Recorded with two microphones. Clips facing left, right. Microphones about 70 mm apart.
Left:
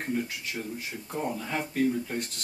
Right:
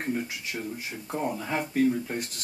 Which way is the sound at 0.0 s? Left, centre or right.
Centre.